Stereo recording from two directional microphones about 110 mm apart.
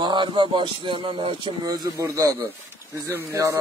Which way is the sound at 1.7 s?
35° right (ahead or behind).